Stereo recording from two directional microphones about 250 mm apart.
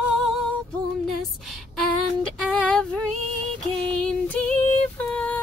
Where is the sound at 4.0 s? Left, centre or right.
Centre.